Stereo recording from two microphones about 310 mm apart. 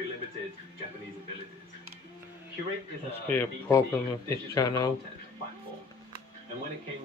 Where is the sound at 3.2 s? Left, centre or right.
Centre.